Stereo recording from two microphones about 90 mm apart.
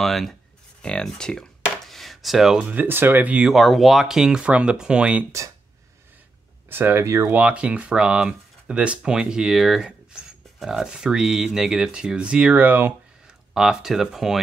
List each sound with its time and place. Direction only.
0.0 s speech: 5° left (ahead or behind)
0.8 s a sound: 10° left (ahead or behind)
2.7 s speech: 20° right (ahead or behind)
3.4 s speech: centre (ahead or behind)
6.7 s speech: 25° right (ahead or behind)
7.3 s speech: 15° right (ahead or behind)
13.5 s speech: 5° right (ahead or behind)